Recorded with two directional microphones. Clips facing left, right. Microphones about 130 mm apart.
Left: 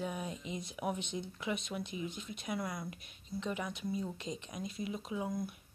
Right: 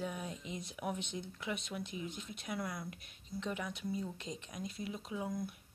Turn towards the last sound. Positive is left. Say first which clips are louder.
# left 3 dB
turn(degrees=5)  # may be behind; listen again after turning